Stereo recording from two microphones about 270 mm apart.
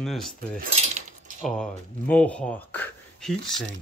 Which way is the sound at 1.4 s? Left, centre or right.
Centre.